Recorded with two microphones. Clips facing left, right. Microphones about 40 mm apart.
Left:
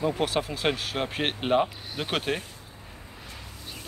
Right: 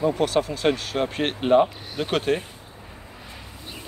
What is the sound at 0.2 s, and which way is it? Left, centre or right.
Speech, centre.